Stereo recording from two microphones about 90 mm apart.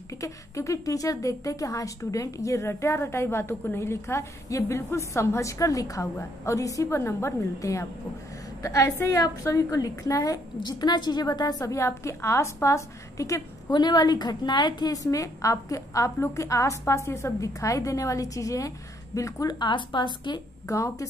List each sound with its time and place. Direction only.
0.2 s a woman's voice: 35° left (ahead or behind)
13.7 s a woman's voice: 55° left (ahead or behind); by 19.5 s 35° left (ahead or behind)
19.6 s a woman's voice: 60° left (ahead or behind)
20.6 s a woman's voice: 35° left (ahead or behind)